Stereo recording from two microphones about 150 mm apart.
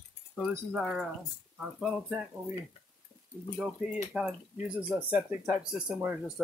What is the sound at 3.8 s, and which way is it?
Speech, 5° right (ahead or behind).